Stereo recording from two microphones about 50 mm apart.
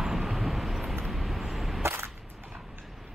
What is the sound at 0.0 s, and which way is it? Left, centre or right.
Vehicle, centre.